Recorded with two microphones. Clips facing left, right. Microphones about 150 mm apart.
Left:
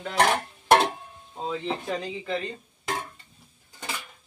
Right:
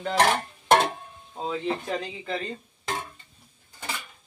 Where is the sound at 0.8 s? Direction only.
5° right (ahead or behind).